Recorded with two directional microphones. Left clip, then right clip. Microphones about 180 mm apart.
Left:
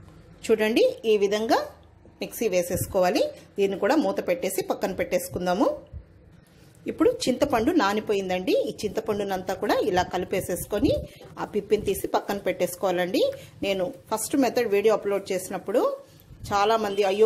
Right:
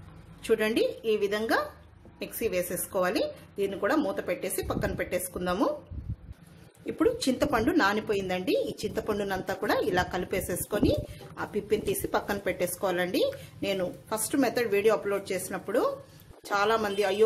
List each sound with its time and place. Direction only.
0.4 s a woman's voice: 25° left (ahead or behind)
6.9 s a woman's voice: 30° left (ahead or behind)